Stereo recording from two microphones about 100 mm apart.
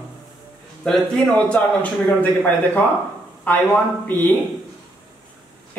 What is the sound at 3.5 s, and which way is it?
Speech, 15° left (ahead or behind).